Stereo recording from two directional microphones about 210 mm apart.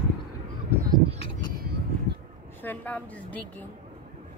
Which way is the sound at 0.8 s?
25° right (ahead or behind).